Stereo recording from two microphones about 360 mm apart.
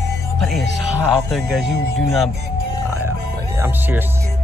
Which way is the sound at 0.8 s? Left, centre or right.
Centre.